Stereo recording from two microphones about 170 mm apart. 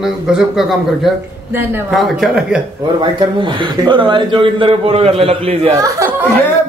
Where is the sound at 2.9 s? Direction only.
25° right (ahead or behind).